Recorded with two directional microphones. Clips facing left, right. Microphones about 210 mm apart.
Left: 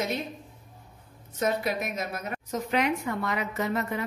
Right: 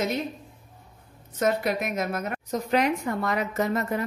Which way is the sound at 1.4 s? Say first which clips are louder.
Right 3 dB; 55° right (ahead or behind).